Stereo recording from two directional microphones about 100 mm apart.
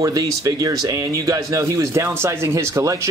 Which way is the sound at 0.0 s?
35° right (ahead or behind).